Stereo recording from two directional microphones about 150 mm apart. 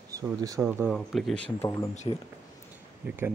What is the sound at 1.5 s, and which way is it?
Speech, 20° left (ahead or behind).